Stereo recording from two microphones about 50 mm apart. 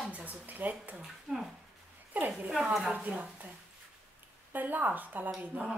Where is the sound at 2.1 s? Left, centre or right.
Right.